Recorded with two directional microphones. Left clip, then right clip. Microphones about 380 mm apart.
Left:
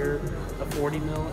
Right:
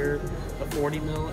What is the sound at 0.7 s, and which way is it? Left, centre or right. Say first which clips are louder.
Speech: right 1 dB; centre.